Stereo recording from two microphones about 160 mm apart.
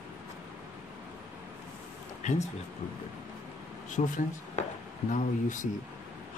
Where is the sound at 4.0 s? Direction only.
50° left (ahead or behind).